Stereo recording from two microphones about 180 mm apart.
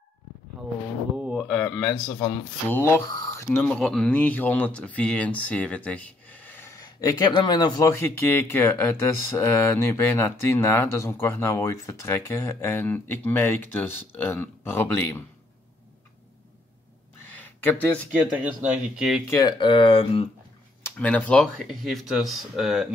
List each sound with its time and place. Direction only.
1.1 s speech: 5° right (ahead or behind); by 15.2 s 10° left (ahead or behind)
18.9 s speech: 5° right (ahead or behind)
19.2 s speech: 20° left (ahead or behind)
20.8 s speech: 10° left (ahead or behind)